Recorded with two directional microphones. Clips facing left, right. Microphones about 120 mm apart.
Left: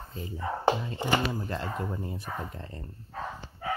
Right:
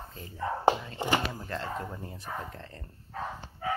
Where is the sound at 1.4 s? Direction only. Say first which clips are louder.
Left 2 dB; 15° left (ahead or behind).